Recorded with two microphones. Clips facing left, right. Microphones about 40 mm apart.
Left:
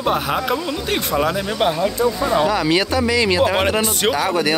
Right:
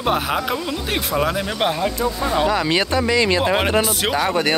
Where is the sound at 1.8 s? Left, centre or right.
Centre.